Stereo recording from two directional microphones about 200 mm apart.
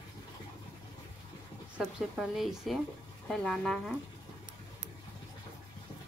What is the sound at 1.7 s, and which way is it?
Speech, centre (ahead or behind).